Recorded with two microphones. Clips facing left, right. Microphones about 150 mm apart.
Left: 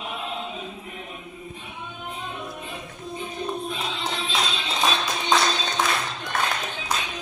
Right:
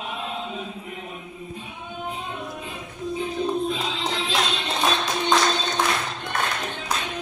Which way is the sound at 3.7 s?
90° right.